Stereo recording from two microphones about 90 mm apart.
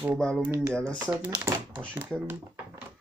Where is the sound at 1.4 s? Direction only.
25° right (ahead or behind).